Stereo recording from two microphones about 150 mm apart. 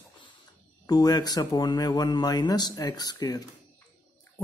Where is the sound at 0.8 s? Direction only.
25° left (ahead or behind).